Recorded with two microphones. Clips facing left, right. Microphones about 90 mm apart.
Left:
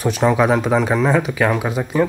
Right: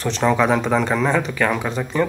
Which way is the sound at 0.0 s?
10° left (ahead or behind).